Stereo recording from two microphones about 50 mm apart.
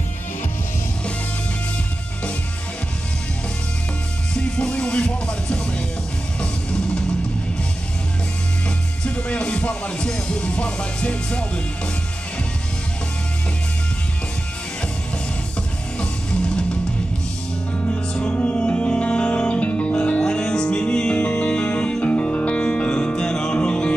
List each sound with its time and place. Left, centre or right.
4.3 s music: left
8.6 s speech: left
16.0 s music: centre
17.7 s music: left